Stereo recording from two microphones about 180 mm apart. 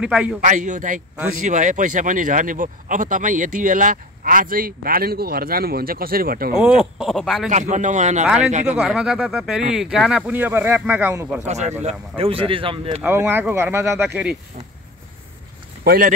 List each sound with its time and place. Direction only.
0.0 s speech: 5° right (ahead or behind)
0.4 s a man's voice: 45° right (ahead or behind)
6.6 s speech: centre (ahead or behind)
7.4 s speech: 45° right (ahead or behind)
8.7 s speech: 5° right (ahead or behind)
11.4 s speech: 40° right (ahead or behind)
13.0 s speech: 10° right (ahead or behind)
15.8 s speech: 60° right (ahead or behind)